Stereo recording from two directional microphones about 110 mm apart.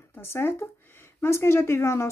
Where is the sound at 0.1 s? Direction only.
20° left (ahead or behind).